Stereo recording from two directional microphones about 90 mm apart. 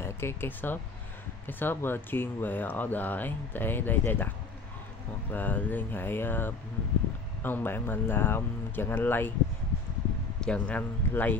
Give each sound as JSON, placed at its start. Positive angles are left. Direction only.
{"t": 0.0, "sound": "speech", "side_deg": 25}
{"t": 5.3, "sound": "speech", "side_deg": 20}
{"t": 10.4, "sound": "speech", "side_deg": 15}